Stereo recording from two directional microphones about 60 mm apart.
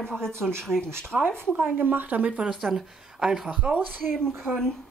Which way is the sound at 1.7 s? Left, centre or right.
Right.